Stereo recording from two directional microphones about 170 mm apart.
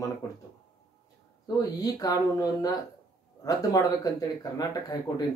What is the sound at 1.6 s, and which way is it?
Speech, 20° left (ahead or behind).